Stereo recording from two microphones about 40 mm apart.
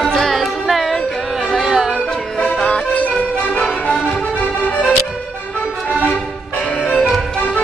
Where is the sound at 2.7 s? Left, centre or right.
Left.